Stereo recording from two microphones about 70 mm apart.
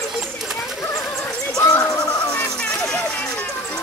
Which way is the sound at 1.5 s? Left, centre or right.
Left.